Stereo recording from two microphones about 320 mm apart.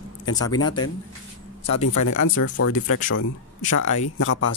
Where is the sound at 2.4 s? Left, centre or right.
Left.